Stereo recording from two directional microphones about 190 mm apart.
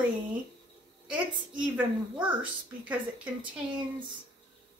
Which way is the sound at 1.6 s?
10° right (ahead or behind).